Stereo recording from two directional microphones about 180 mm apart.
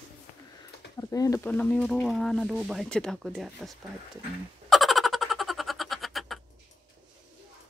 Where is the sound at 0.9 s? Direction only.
20° left (ahead or behind); by 3.7 s centre (ahead or behind).